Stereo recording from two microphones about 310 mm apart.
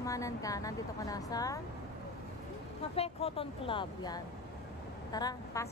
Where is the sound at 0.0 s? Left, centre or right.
Centre.